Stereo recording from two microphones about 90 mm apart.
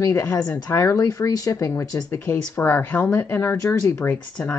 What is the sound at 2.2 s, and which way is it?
Speech, 25° left (ahead or behind).